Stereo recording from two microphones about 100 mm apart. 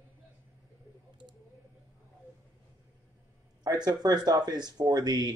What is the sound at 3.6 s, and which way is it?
Speech, 40° right (ahead or behind).